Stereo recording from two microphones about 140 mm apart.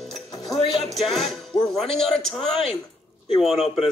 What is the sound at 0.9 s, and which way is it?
A man's voice, centre (ahead or behind).